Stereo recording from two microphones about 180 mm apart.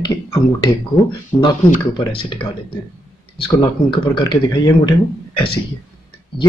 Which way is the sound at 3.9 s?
25° left (ahead or behind).